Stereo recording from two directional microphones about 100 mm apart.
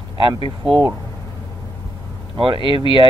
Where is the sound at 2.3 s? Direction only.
55° right (ahead or behind).